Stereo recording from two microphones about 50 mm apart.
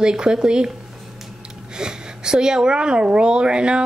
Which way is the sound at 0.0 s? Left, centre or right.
Centre.